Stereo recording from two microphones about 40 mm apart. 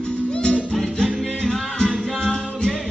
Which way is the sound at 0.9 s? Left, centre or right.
Centre.